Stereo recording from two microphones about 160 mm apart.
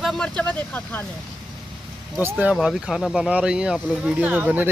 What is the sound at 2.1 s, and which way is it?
Speech, 10° right (ahead or behind).